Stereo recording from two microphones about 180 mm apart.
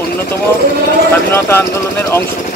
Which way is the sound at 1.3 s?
15° left (ahead or behind).